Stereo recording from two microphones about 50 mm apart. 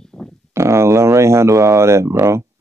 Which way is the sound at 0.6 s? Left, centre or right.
Right.